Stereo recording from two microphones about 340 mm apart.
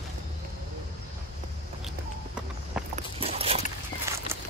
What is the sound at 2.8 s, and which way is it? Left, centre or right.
Walk, centre.